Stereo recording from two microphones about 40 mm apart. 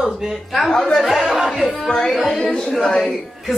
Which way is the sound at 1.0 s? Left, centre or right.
Centre.